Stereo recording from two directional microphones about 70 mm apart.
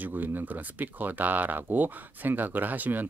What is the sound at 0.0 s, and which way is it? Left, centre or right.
Speech, right.